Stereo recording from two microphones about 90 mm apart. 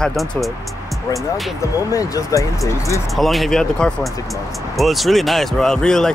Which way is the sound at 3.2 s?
Centre (ahead or behind).